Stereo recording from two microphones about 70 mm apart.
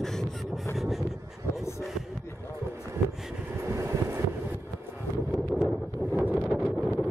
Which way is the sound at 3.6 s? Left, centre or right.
Right.